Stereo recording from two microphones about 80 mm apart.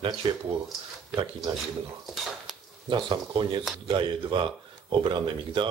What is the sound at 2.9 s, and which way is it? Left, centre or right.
Speech, right.